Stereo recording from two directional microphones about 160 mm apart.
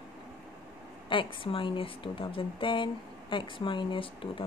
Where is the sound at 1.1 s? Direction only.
30° left (ahead or behind).